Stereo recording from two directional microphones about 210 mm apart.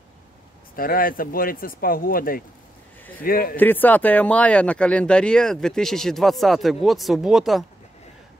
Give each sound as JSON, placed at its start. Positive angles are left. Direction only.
{"t": 0.7, "sound": "speech", "side_deg": 45}
{"t": 3.5, "sound": "speech", "side_deg": 10}